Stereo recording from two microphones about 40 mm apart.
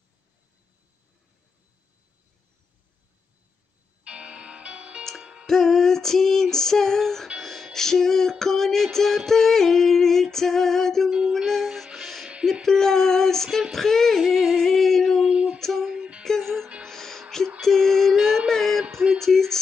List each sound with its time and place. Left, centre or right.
4.0 s music: right
5.5 s female singing: centre
7.3 s music: centre
11.1 s music: right
11.3 s music: centre
12.6 s a sound: centre
13.5 s female singing: centre
15.8 s a sound: right
16.2 s music: centre
17.6 s female singing: centre
18.5 s music: centre